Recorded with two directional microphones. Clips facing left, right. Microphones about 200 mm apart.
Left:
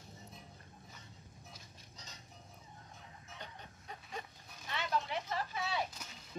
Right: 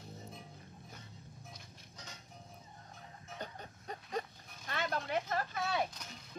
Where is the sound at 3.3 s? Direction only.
45° right (ahead or behind).